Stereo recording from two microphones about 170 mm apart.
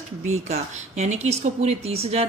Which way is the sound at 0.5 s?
45° right (ahead or behind).